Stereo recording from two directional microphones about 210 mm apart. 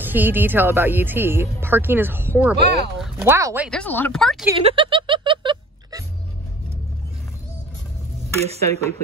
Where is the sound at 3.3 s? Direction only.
10° right (ahead or behind).